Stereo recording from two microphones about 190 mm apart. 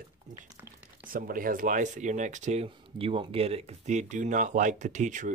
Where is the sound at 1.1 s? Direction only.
50° right (ahead or behind).